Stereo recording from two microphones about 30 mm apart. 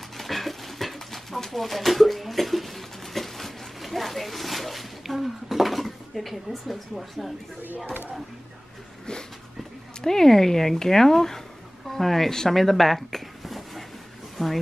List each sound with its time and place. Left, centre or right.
0.2 s dog: centre
7.6 s speech: right
10.0 s speech: centre
14.3 s a sound: centre